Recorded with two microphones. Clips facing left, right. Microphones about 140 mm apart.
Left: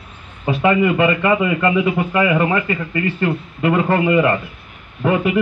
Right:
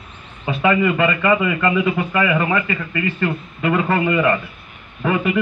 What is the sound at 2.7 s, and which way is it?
Speech, 30° left (ahead or behind).